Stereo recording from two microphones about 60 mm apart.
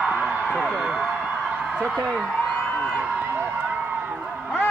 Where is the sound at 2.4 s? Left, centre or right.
Centre.